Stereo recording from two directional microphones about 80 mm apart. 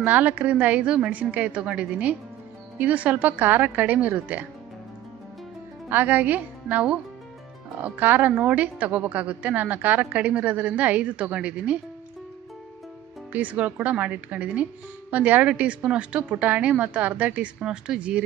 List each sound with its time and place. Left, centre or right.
0.0 s a woman's voice: right
5.9 s a woman's voice: right
13.3 s speech: centre